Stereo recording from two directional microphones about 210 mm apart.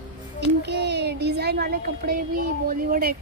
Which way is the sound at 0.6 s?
55° right (ahead or behind).